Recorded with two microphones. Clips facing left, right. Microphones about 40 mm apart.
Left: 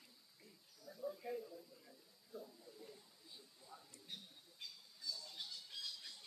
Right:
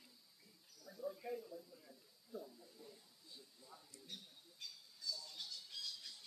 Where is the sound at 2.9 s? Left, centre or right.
Centre.